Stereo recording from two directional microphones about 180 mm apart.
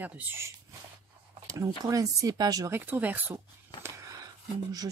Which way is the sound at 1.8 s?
20° right (ahead or behind).